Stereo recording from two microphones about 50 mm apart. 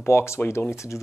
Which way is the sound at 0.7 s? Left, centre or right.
Left.